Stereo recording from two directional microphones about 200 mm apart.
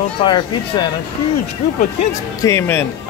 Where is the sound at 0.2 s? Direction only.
25° left (ahead or behind).